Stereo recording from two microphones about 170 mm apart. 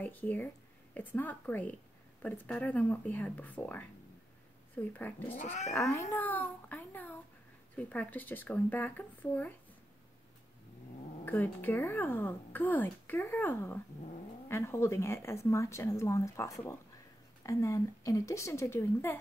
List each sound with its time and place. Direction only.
0.0 s speech: 10° left (ahead or behind)
5.4 s speech: 45° left (ahead or behind)
5.7 s speech: 15° left (ahead or behind)
6.1 s a sound: 10° left (ahead or behind)
7.7 s speech: 10° left (ahead or behind)
11.2 s speech: 10° left (ahead or behind)